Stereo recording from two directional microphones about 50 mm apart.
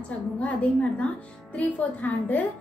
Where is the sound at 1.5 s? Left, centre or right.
Left.